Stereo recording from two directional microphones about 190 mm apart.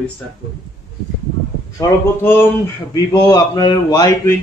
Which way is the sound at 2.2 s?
10° left (ahead or behind).